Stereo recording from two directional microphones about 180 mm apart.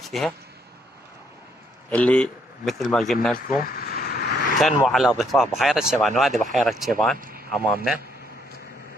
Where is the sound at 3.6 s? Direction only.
55° left (ahead or behind).